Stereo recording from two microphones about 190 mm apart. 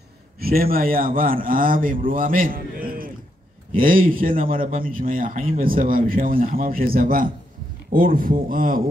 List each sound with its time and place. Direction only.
0.4 s a man's voice: 50° right (ahead or behind)